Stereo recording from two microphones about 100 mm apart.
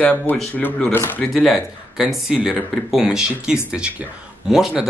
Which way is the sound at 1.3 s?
Centre (ahead or behind).